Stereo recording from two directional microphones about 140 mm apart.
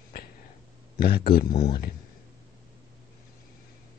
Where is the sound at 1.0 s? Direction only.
90° left.